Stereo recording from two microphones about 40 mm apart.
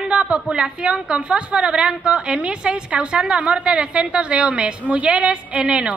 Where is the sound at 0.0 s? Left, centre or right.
Right.